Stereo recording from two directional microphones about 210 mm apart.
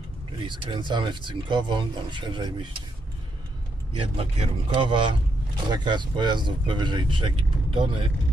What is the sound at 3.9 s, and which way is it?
Speech, 25° right (ahead or behind).